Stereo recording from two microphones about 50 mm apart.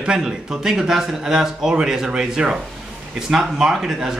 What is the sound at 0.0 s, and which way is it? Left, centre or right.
Speech, centre.